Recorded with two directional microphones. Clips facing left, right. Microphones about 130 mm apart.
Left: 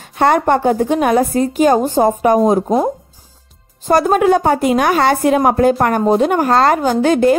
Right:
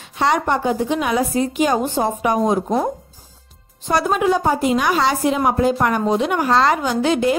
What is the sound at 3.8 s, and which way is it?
A woman's voice, 45° left (ahead or behind).